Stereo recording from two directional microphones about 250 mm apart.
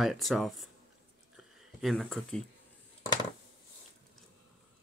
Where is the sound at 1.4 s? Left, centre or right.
Centre.